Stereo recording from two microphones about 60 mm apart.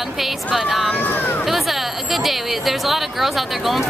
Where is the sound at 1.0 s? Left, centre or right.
Left.